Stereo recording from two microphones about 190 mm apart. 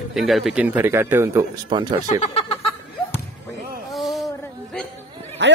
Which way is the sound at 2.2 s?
30° left (ahead or behind).